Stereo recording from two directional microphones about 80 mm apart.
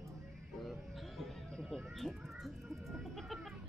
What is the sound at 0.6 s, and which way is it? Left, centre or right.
Music, centre.